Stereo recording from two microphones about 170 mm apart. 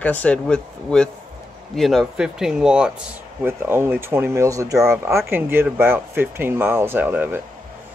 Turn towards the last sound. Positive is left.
turn(degrees=-10)  # may be behind; listen again after turning